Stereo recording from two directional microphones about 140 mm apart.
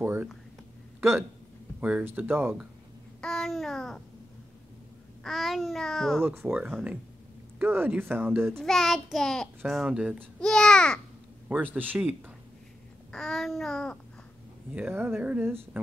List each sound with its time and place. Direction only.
0.0 s speech: 15° right (ahead or behind)
1.8 s speech: 10° right (ahead or behind)
3.2 s babbling: 5° left (ahead or behind)
5.2 s a child's voice: centre (ahead or behind)
6.2 s speech: 15° right (ahead or behind)
8.5 s a child's voice: centre (ahead or behind)
10.4 s speech: 5° left (ahead or behind)
11.4 s speech: 10° right (ahead or behind)
13.1 s a child's voice: 5° left (ahead or behind)
14.7 s speech: 10° right (ahead or behind)